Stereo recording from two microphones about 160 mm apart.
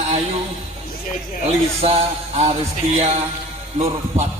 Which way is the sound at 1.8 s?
40° right (ahead or behind).